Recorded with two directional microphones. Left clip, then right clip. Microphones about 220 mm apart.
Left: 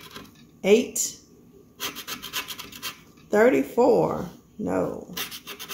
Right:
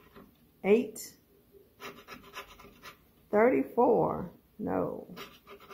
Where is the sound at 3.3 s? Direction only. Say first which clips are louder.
Left 6 dB; 20° right (ahead or behind).